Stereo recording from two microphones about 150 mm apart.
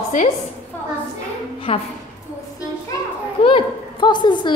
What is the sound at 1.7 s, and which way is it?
Speech, 35° left (ahead or behind).